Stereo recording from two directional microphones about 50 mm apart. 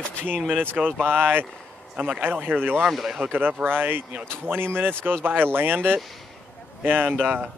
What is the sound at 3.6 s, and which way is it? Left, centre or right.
A man's voice, right.